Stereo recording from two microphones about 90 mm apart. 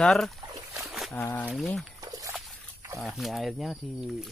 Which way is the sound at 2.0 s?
45° right (ahead or behind).